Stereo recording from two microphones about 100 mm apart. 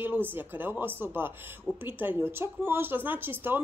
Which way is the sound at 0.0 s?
20° right (ahead or behind).